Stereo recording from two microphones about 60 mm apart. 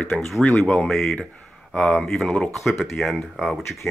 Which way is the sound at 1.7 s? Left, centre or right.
Left.